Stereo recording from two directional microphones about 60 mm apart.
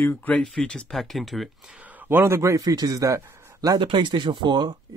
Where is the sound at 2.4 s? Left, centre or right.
Right.